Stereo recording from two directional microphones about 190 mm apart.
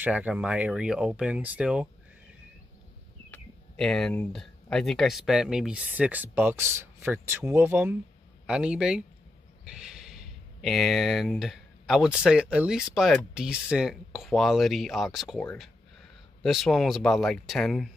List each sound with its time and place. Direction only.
0.0 s speech: 5° right (ahead or behind)
3.3 s speech: 5° left (ahead or behind)
16.4 s speech: centre (ahead or behind)